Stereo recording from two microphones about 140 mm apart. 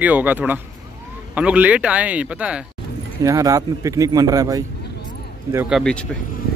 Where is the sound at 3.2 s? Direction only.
25° right (ahead or behind).